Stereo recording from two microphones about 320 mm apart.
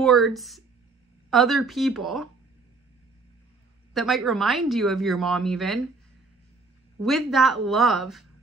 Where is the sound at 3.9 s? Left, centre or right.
Centre.